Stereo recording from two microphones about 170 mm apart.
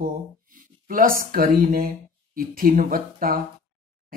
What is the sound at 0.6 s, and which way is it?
Speech, 55° right (ahead or behind).